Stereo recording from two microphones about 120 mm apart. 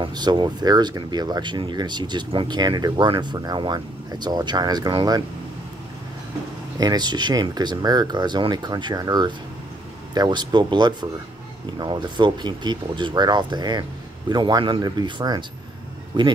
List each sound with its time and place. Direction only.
0.0 s speech: 35° right (ahead or behind)
6.8 s speech: 35° right (ahead or behind)